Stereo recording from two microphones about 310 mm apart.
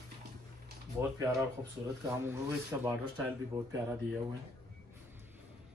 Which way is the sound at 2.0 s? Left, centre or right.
Centre.